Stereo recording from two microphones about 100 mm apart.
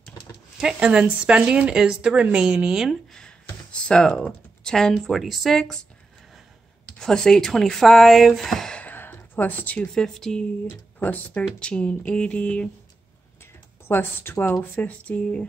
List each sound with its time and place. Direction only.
0.6 s speech: 10° right (ahead or behind)
7.0 s speech: 5° left (ahead or behind)
8.8 s a sound: 20° left (ahead or behind)
9.9 s speech: 5° left (ahead or behind)
11.0 s speech: 15° left (ahead or behind)
13.8 s speech: 20° left (ahead or behind)